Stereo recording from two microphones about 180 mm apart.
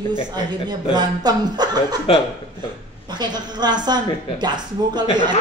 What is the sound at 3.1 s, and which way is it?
A woman's voice, 25° right (ahead or behind).